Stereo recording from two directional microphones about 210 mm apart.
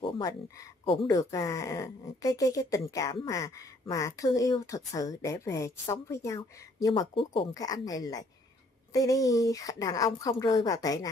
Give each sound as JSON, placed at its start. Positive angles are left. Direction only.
{"t": 0.0, "sound": "speech", "side_deg": 20}